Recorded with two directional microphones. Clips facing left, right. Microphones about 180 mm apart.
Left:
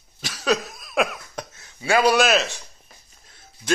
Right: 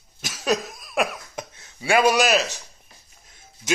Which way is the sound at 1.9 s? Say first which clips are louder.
Even; 15° right (ahead or behind).